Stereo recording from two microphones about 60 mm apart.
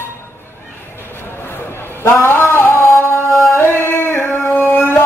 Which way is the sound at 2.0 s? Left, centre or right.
Left.